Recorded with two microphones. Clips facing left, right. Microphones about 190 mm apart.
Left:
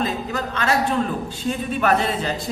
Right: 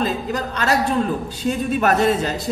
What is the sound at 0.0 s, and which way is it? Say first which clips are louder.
A man's voice: right 2 dB; 40° right (ahead or behind).